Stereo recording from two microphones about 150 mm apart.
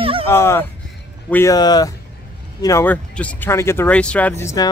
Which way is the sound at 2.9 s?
10° left (ahead or behind).